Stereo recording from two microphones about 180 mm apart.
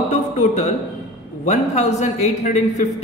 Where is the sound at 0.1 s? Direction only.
40° left (ahead or behind).